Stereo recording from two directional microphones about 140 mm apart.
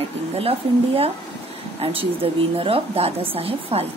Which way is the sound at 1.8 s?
40° right (ahead or behind).